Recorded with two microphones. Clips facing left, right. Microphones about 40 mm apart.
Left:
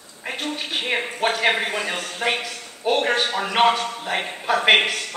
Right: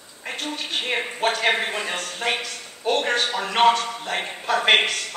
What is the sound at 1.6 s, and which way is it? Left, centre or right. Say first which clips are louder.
A man's voice: left 2 dB; centre.